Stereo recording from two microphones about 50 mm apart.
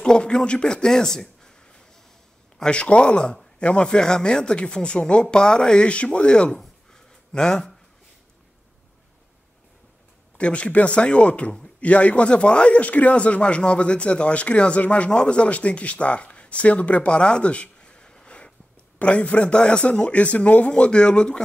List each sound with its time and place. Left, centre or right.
0.0 s a man's voice: centre
6.5 s a sound: centre
10.3 s speech: left